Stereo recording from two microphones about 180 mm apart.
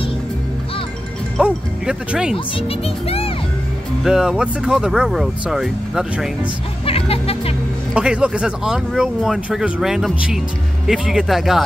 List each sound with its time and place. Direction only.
1.4 s speech: 5° right (ahead or behind)
2.3 s speech: 30° left (ahead or behind)
4.0 s speech: 5° right (ahead or behind)
6.9 s music: 30° left (ahead or behind)
7.9 s speech: 5° right (ahead or behind)